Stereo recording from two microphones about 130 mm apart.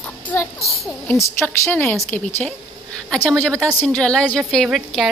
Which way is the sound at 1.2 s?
15° left (ahead or behind).